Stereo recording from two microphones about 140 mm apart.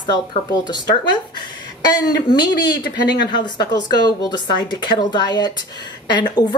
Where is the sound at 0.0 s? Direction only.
30° left (ahead or behind).